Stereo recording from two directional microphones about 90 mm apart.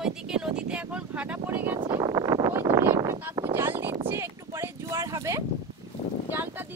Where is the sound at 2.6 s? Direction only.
30° right (ahead or behind).